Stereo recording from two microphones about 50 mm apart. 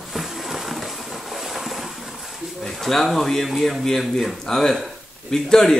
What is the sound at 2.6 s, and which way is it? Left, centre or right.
Speech, centre.